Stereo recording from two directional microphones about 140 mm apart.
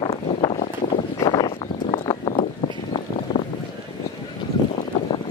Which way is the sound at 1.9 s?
40° left (ahead or behind).